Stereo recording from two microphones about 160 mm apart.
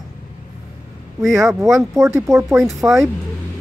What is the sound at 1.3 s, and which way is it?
Speech, 20° right (ahead or behind).